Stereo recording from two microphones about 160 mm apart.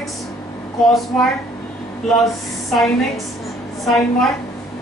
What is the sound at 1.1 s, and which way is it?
A woman's voice, 5° left (ahead or behind).